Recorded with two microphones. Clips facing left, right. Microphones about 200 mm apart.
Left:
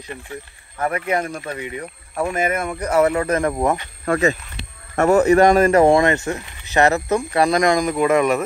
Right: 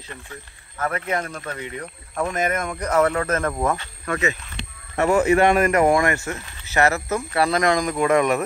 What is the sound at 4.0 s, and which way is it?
Speech, 35° left (ahead or behind).